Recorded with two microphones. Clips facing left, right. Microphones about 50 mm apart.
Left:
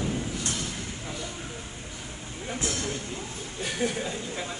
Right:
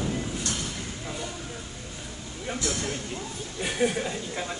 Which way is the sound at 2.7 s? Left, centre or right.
Right.